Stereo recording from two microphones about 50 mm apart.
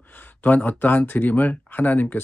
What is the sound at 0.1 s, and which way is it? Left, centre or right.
Speech, left.